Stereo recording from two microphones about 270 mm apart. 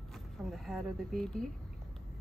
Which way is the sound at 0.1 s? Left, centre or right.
Centre.